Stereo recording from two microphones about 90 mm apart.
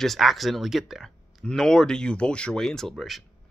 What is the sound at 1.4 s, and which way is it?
Speech, 10° left (ahead or behind).